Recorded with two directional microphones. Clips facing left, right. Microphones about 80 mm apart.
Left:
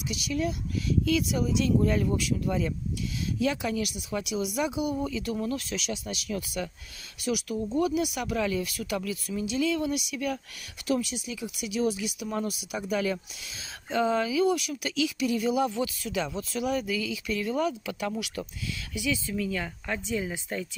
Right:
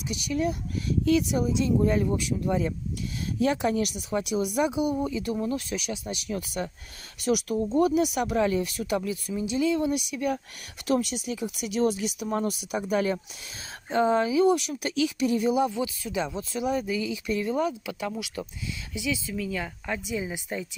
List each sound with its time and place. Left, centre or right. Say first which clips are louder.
0.3 s speech: right 2 dB; right
3.3 s speech: right 4 dB; right
7.2 s speech: right 4 dB; right
7.5 s speech: right 4 dB; right
10.9 s speech: right 3 dB; right
12.3 s speech: right 4 dB; right
15.6 s speech: right 1 dB; centre
16.6 s speech: right 2 dB; right; by 20.6 s centre